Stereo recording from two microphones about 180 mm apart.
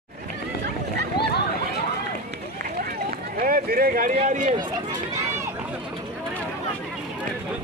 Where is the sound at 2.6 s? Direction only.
55° right (ahead or behind).